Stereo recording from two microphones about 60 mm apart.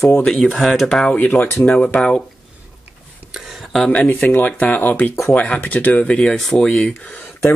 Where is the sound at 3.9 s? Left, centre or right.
Left.